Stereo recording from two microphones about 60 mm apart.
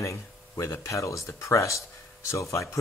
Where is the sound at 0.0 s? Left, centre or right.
Left.